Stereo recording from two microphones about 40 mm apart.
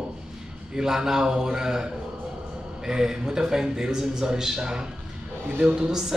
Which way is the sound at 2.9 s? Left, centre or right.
Centre.